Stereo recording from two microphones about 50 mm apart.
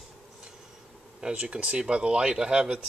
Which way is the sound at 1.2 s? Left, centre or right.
Centre.